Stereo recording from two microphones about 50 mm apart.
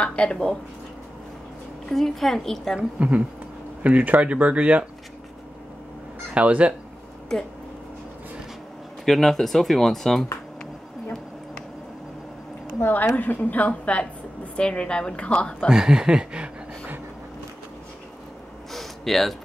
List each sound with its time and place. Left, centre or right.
0.0 s a woman's voice: left
1.9 s speech: centre
3.0 s speech: right
6.3 s speech: right
7.3 s speech: centre
9.0 s speech: centre
12.8 s a woman's voice: left
13.1 s a woman's voice: left
15.7 s a sound: centre
18.7 s a sound: centre